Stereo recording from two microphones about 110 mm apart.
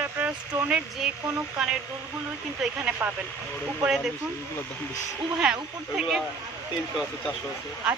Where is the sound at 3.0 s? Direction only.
15° right (ahead or behind).